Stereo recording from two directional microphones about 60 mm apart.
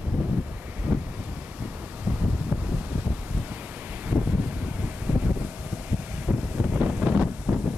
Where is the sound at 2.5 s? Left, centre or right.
Right.